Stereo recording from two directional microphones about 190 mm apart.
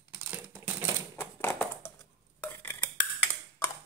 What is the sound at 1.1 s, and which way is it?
Typewriter, 10° left (ahead or behind).